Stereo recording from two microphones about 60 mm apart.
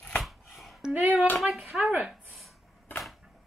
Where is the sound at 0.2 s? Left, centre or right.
Centre.